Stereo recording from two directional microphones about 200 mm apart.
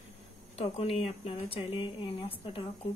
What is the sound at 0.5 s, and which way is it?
Speech, 30° left (ahead or behind).